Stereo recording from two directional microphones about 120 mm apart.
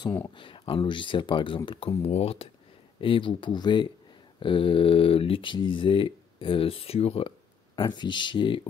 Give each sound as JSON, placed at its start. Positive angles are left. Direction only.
{"t": 0.4, "sound": "speech", "side_deg": 45}
{"t": 2.0, "sound": "speech", "side_deg": 60}